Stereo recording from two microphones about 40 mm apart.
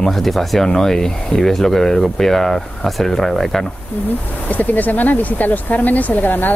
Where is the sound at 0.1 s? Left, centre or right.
Centre.